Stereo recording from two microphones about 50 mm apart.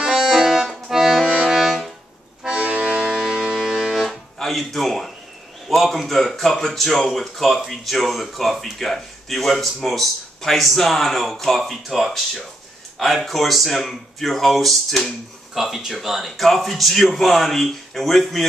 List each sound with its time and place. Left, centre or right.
0.2 s accordion: centre
1.5 s music: centre
2.4 s accordion: centre
3.0 s music: centre
5.7 s speech: centre
15.5 s speech: centre